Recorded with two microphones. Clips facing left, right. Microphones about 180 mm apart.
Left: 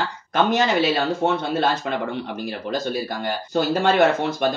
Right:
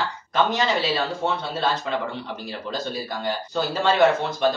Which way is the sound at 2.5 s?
55° left (ahead or behind).